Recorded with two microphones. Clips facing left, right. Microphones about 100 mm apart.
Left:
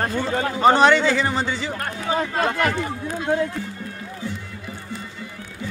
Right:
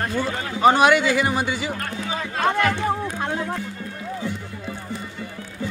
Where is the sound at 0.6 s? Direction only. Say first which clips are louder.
Even; 10° right (ahead or behind).